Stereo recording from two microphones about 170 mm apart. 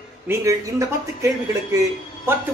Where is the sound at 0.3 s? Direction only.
20° right (ahead or behind).